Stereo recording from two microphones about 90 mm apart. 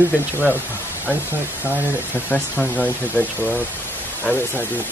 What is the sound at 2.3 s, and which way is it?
Speech, 20° left (ahead or behind).